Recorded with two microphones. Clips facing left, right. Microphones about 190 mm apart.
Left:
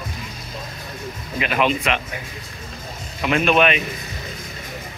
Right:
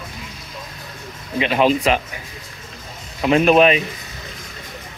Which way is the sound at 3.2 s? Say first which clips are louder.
Right 4 dB; 30° right (ahead or behind).